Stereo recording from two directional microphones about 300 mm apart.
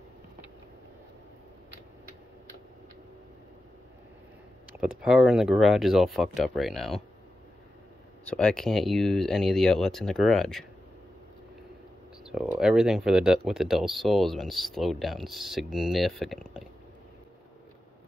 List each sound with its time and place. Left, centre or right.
4.7 s speech: centre
8.3 s speech: centre
12.3 s speech: centre